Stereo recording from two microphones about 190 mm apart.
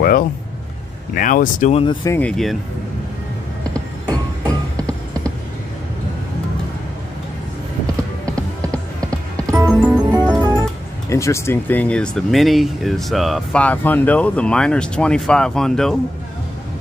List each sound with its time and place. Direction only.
0.0 s a sound: 50° left (ahead or behind)
1.1 s speech: 45° left (ahead or behind)
2.0 s speech: 10° left (ahead or behind)
4.1 s music: 20° right (ahead or behind)
9.7 s music: centre (ahead or behind)
11.1 s speech: 15° left (ahead or behind)